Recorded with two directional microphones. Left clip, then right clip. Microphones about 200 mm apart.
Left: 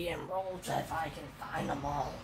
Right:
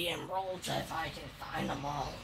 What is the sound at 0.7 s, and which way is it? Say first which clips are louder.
Speech: left 3 dB; 40° right (ahead or behind).